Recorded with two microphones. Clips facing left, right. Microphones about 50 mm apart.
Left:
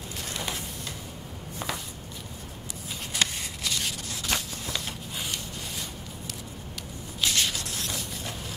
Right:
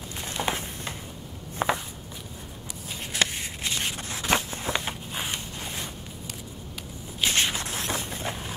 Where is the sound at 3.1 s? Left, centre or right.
Right.